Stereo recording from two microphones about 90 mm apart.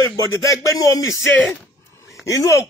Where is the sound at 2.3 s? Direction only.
35° left (ahead or behind).